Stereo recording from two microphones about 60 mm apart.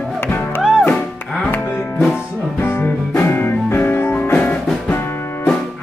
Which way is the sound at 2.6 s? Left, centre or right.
Left.